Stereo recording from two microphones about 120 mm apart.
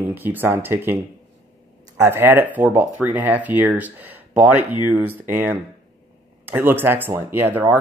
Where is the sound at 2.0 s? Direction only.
20° right (ahead or behind).